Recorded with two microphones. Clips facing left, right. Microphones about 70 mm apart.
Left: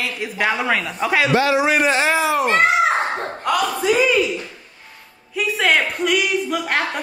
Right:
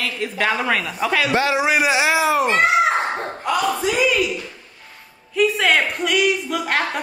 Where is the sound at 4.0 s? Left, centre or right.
Left.